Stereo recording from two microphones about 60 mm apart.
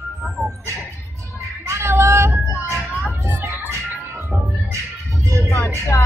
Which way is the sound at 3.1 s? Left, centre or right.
Right.